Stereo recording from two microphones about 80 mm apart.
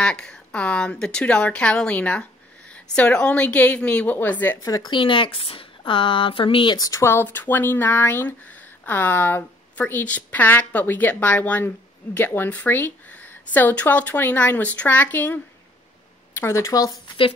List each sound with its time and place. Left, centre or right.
0.0 s speech: centre
4.6 s speech: left
4.9 s a sound: left
6.8 s speech: left